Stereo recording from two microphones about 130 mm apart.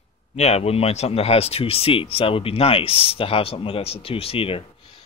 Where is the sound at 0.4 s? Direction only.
55° left (ahead or behind).